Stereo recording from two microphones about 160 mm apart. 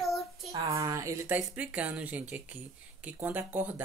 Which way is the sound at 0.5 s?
20° right (ahead or behind).